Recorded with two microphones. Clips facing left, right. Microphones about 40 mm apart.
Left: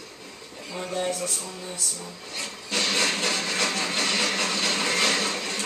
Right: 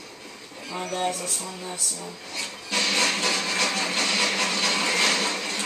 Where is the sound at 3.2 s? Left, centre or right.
Centre.